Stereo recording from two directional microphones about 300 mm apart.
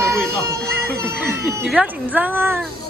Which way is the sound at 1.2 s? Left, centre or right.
Centre.